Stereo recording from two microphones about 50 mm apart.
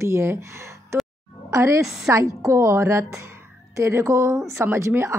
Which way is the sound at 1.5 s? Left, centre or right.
Right.